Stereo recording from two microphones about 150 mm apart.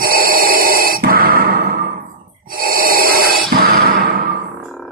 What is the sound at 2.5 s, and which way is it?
Breathing, 75° right (ahead or behind).